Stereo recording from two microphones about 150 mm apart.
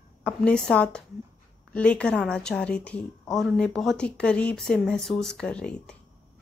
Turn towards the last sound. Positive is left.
turn(degrees=5)  # may be behind; listen again after turning